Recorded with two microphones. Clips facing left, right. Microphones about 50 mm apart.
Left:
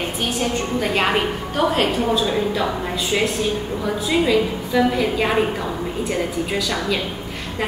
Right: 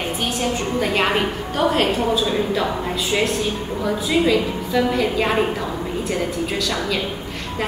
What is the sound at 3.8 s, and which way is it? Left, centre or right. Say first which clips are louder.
A woman's voice: right 2 dB; centre.